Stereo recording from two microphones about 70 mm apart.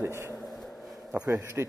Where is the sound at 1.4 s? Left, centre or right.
Right.